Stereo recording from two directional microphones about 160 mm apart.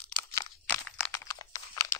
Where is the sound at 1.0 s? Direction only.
20° left (ahead or behind).